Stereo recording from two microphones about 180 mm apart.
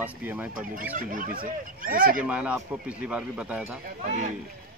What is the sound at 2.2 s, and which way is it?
Speech, 10° right (ahead or behind).